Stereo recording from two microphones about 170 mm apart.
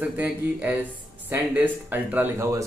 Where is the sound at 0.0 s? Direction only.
10° right (ahead or behind).